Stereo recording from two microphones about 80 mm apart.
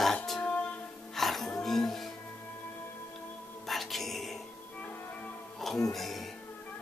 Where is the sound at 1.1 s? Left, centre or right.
Centre.